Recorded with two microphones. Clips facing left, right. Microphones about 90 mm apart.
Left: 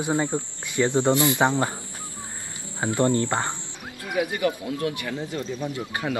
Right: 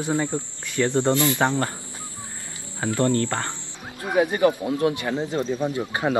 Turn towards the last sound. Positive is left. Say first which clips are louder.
# right 5 dB
turn(degrees=-35)  # may be behind; listen again after turning